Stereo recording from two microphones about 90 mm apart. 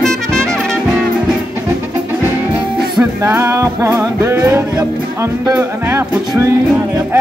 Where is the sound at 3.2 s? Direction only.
30° right (ahead or behind).